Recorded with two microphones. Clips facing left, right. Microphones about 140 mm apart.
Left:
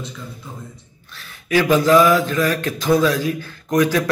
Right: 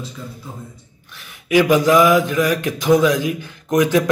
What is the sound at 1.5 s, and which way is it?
Speech, 15° right (ahead or behind).